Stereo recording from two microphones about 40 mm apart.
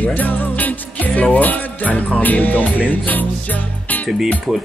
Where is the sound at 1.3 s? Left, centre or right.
Left.